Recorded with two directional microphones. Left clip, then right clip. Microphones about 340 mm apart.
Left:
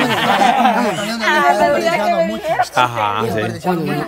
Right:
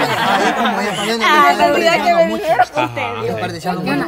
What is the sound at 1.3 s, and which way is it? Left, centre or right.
Speech, centre.